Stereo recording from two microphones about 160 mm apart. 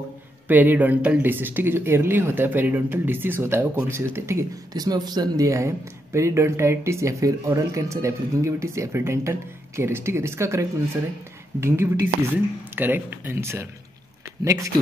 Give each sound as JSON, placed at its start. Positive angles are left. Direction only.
{"t": 0.5, "sound": "speech", "side_deg": -10}